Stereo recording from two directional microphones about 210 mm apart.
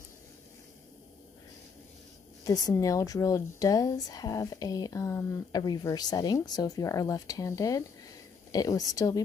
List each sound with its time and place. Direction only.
2.4 s a woman's voice: 15° left (ahead or behind)